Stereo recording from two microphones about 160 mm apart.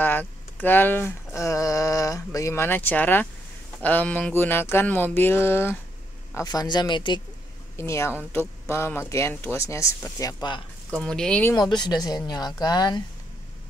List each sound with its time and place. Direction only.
0.0 s speech: 10° left (ahead or behind); by 7.2 s 30° left (ahead or behind)
7.7 s speech: 15° left (ahead or behind)
10.9 s speech: 5° left (ahead or behind)
11.7 s speech: 25° left (ahead or behind)